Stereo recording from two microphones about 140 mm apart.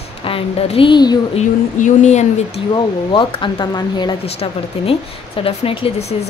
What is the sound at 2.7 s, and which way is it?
Speech, 35° left (ahead or behind).